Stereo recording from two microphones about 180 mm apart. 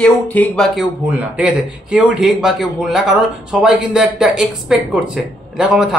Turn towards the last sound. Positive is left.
turn(degrees=-5)  # may be behind; listen again after turning